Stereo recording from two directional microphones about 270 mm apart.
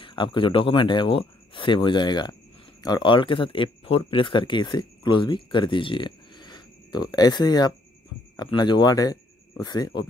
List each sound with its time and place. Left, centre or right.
0.0 s speech: centre